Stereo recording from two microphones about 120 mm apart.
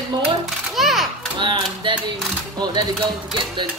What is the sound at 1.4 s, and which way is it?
Speech, 45° right (ahead or behind).